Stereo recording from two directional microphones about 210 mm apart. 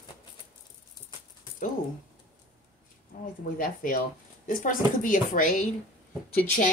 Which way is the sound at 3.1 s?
40° left (ahead or behind).